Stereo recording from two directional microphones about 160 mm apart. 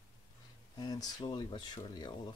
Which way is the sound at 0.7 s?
25° left (ahead or behind).